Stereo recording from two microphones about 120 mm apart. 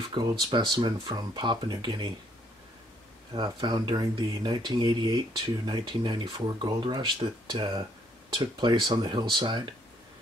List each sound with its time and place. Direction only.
0.1 s speech: 40° right (ahead or behind)
3.3 s speech: 35° right (ahead or behind)